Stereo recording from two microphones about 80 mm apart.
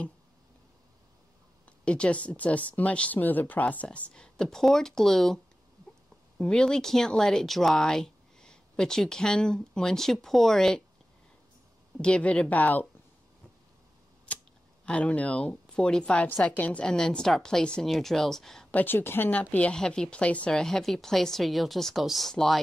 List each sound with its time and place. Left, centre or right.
1.7 s speech: centre
12.0 s speech: centre
14.3 s scissors: centre
14.9 s a woman's voice: centre
18.7 s speech: left
19.5 s a woman's voice: centre